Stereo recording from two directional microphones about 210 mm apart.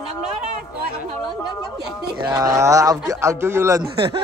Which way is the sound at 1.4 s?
Centre (ahead or behind).